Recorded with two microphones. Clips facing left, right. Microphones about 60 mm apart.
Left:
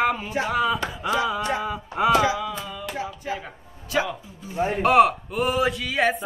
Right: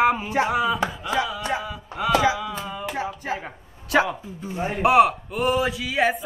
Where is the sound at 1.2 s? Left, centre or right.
Left.